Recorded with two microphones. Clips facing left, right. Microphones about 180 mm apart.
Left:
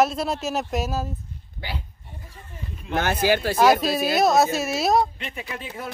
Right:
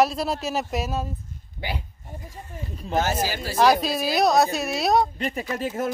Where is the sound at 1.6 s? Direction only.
15° right (ahead or behind).